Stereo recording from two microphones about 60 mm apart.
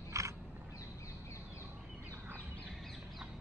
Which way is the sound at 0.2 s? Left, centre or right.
Right.